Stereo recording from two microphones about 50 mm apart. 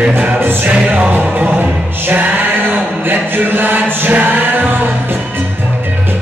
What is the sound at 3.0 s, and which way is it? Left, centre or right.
Music, right.